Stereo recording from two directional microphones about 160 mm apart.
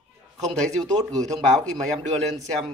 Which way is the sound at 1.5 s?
5° left (ahead or behind).